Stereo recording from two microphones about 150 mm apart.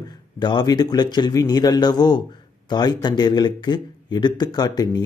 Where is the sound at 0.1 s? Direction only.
30° left (ahead or behind).